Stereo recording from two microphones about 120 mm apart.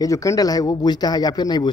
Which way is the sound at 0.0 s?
25° left (ahead or behind).